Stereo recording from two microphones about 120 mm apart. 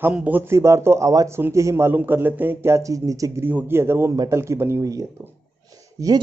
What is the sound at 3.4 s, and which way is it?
A man's voice, 15° right (ahead or behind).